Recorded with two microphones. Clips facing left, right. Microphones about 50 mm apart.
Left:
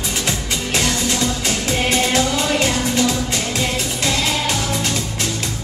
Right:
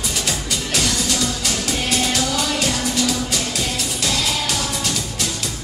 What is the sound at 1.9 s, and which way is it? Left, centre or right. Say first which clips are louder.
Music: left 3 dB; left.